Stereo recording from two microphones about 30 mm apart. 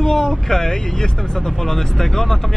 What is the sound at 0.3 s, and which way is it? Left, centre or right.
Speech, centre.